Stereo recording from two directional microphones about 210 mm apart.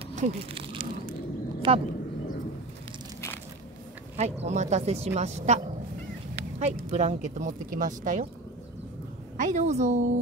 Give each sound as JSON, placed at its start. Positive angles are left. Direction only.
{"t": 0.1, "sound": "a sound", "side_deg": -30}
{"t": 1.7, "sound": "speech", "side_deg": -25}
{"t": 4.2, "sound": "speech", "side_deg": -30}
{"t": 9.4, "sound": "speech", "side_deg": -35}